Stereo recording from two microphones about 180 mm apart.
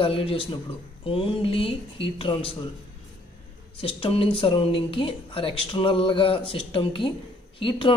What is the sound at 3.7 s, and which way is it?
Speech, 30° left (ahead or behind).